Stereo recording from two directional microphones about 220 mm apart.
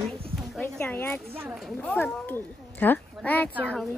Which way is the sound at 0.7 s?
10° left (ahead or behind).